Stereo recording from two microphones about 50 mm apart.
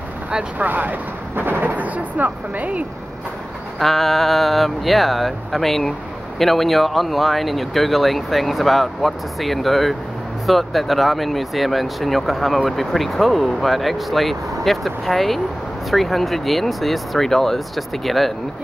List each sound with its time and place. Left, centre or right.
0.6 s speech: right
3.8 s speech: centre